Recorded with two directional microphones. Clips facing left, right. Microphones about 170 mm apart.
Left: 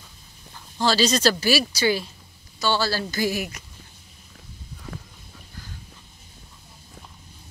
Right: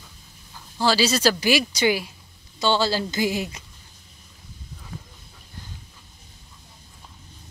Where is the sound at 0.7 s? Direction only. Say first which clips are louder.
Even; 10° right (ahead or behind).